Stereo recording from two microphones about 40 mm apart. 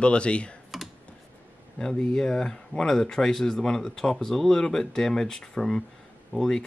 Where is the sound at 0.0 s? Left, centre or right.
Left.